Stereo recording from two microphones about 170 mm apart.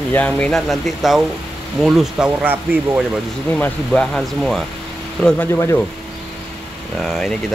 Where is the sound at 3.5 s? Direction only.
5° left (ahead or behind).